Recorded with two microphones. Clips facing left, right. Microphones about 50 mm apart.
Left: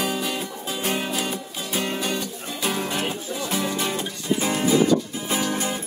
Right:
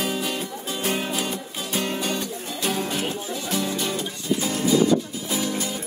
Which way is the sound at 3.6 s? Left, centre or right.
Left.